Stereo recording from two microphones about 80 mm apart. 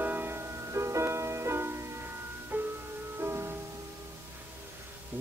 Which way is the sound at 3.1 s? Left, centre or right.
Right.